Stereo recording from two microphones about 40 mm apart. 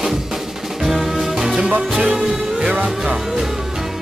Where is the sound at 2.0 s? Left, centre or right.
Right.